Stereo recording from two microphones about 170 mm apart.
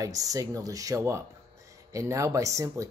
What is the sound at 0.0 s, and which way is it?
Speech, 20° right (ahead or behind).